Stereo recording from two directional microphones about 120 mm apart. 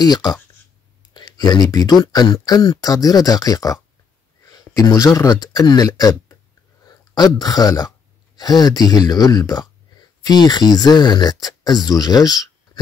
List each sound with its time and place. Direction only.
0.0 s speech: 35° left (ahead or behind)